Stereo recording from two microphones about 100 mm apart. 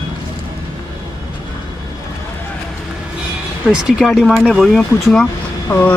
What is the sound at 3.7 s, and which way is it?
Speech, 5° right (ahead or behind).